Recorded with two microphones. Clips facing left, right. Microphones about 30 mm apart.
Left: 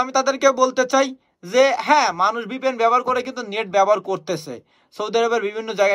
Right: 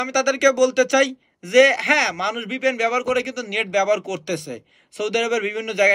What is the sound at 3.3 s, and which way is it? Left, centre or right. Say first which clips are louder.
Speech: right 1 dB; left.